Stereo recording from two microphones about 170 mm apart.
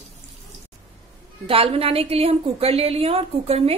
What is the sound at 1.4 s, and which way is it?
Speech, 35° right (ahead or behind).